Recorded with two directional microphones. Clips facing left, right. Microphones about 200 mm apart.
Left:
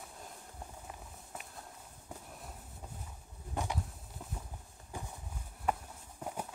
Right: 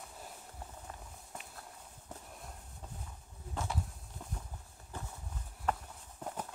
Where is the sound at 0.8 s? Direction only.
5° left (ahead or behind).